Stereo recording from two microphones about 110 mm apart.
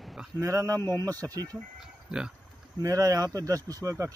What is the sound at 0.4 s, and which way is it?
A man's voice, 25° right (ahead or behind).